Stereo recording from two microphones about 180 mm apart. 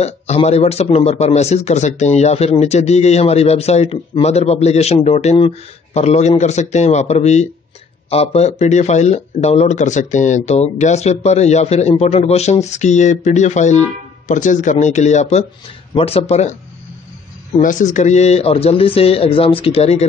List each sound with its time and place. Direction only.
0.0 s a man's voice: 35° left (ahead or behind)
17.6 s a man's voice: 45° left (ahead or behind)